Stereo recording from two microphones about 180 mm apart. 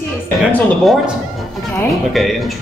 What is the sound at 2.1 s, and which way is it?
Speech, centre (ahead or behind).